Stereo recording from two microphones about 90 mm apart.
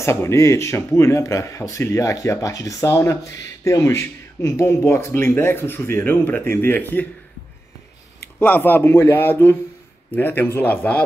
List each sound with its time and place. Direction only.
0.0 s speech: 30° left (ahead or behind)
8.4 s speech: 20° left (ahead or behind)